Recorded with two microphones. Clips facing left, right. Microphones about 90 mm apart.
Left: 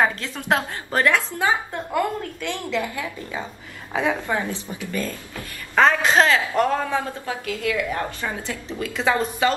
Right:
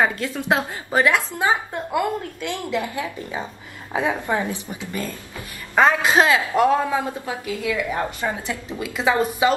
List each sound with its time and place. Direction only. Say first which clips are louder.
0.0 s a woman's voice: right 1 dB; 10° right (ahead or behind)